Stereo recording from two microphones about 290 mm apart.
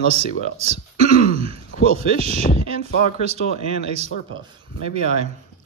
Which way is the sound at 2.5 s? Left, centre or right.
Left.